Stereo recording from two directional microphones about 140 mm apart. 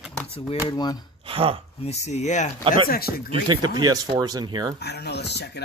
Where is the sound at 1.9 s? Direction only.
55° left (ahead or behind).